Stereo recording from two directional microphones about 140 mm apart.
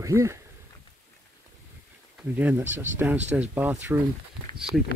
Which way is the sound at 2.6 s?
60° right (ahead or behind).